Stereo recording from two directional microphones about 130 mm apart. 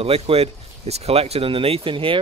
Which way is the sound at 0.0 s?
50° right (ahead or behind).